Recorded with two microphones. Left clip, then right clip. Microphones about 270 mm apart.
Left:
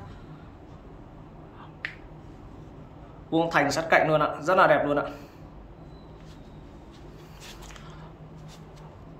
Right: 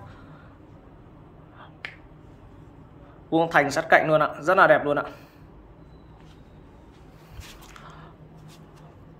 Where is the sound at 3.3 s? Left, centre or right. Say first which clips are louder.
Right 3 dB; centre.